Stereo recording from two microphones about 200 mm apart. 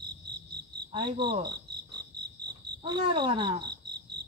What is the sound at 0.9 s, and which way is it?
Speech, 25° right (ahead or behind).